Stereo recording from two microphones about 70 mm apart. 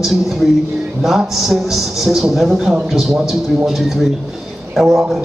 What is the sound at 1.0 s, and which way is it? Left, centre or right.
A man's voice, centre.